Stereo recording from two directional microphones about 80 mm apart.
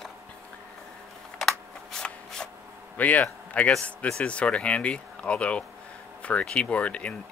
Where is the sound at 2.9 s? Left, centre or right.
Left.